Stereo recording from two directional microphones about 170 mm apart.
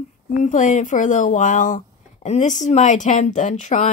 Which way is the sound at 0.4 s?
45° left (ahead or behind).